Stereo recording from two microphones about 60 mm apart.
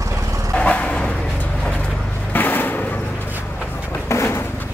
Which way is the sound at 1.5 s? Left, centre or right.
Centre.